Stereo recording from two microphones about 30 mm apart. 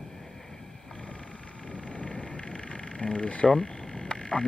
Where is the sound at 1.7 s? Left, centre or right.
Left.